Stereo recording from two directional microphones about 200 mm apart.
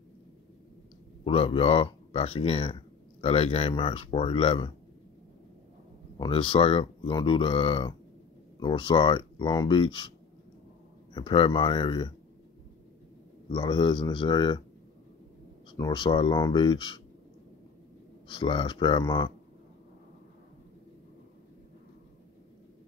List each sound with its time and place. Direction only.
1.2 s speech: 30° left (ahead or behind)
6.1 s speech: 25° left (ahead or behind)
11.1 s speech: 25° left (ahead or behind)
13.5 s speech: 25° left (ahead or behind)
15.7 s speech: 20° left (ahead or behind)
18.3 s speech: 25° left (ahead or behind)